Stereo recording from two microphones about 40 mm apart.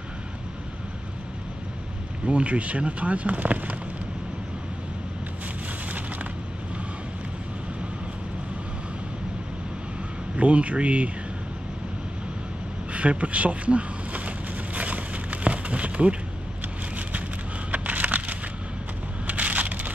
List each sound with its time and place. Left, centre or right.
2.2 s speech: right
10.3 s speech: right
12.9 s a sound: right
17.6 s crushing: right